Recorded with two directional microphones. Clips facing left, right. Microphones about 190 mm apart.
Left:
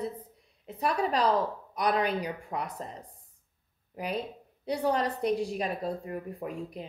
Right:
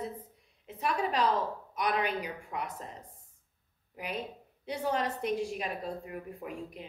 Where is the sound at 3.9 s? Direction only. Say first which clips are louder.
Left 4 dB; 35° left (ahead or behind).